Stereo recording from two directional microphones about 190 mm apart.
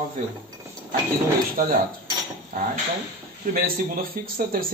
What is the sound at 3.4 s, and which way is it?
Speech, 45° right (ahead or behind).